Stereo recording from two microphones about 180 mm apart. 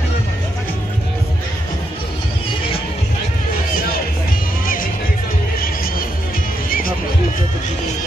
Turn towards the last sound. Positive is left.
turn(degrees=55)  # may be behind; listen again after turning